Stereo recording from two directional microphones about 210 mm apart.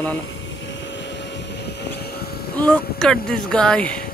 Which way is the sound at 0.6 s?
60° left (ahead or behind).